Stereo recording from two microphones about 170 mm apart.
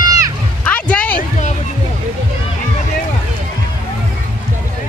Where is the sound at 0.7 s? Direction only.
10° left (ahead or behind).